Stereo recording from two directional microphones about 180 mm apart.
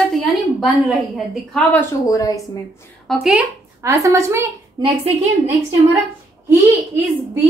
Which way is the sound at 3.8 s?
15° right (ahead or behind).